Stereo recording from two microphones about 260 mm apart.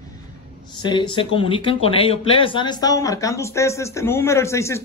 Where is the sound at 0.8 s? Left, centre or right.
Centre.